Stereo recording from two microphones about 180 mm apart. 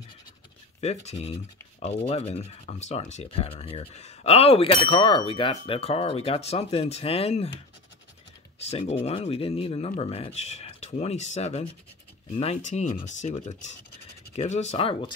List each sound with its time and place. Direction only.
0.7 s speech: 35° left (ahead or behind)
8.5 s speech: 35° left (ahead or behind)